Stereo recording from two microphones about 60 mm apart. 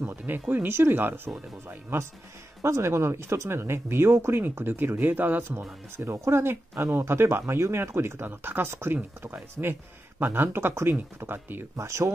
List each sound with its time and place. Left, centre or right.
0.0 s speech: right
2.6 s speech: right
5.6 s speech: right
11.7 s speech: right